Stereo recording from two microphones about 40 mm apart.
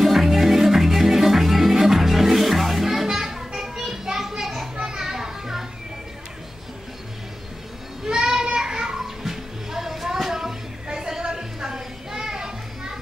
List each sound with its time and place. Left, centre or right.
0.0 s music: centre
4.7 s children playing: centre
8.1 s child singing: centre
8.9 s music: centre